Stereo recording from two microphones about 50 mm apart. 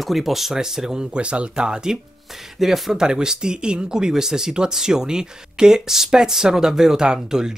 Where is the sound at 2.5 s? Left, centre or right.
Centre.